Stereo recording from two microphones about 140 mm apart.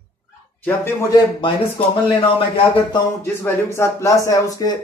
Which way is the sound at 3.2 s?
15° left (ahead or behind).